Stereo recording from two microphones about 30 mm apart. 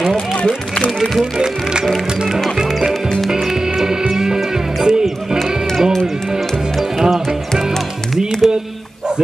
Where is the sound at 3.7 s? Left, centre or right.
Centre.